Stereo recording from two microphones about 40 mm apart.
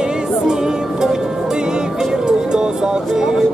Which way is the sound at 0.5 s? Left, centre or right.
Centre.